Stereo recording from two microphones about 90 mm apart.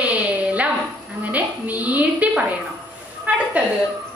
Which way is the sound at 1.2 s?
15° right (ahead or behind).